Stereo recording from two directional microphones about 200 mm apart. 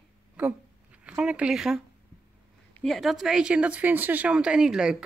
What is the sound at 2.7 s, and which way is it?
Speech, centre (ahead or behind).